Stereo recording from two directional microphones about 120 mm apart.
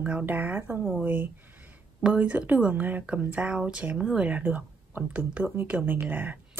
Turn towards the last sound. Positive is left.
turn(degrees=-15)  # may be behind; listen again after turning